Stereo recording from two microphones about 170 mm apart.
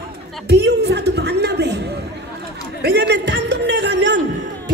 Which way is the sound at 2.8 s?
75° right (ahead or behind).